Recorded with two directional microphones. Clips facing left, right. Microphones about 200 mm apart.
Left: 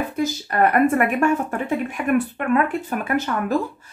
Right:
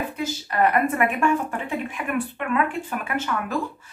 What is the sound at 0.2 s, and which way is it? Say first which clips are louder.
Speech: left 3 dB; 45° left (ahead or behind).